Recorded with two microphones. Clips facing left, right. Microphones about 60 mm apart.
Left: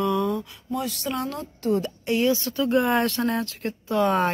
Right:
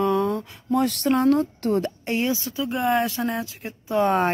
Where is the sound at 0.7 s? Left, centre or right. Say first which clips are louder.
Right 7 dB; right.